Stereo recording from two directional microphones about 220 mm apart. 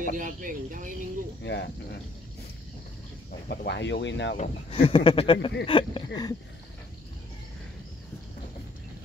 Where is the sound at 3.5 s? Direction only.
50° left (ahead or behind).